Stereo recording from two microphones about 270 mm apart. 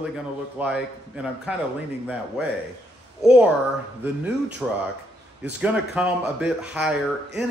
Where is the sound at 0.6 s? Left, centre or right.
Centre.